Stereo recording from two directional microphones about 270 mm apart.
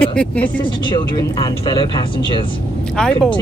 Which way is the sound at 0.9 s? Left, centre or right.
Centre.